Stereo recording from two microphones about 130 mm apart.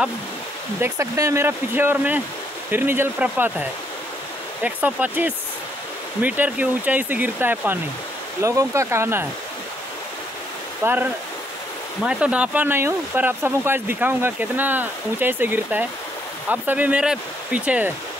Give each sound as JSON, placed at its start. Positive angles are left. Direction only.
{"t": 0.7, "sound": "speech", "side_deg": -20}
{"t": 4.6, "sound": "speech", "side_deg": -10}
{"t": 10.8, "sound": "speech", "side_deg": -15}